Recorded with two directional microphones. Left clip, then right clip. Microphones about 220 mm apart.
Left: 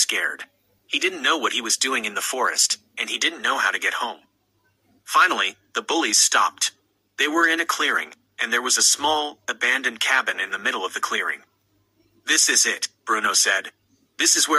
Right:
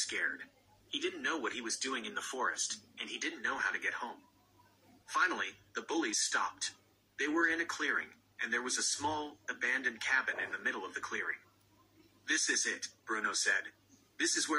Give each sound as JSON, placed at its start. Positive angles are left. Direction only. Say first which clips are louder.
{"t": 0.0, "sound": "speech", "louder": "left 13 dB", "side_deg": 45}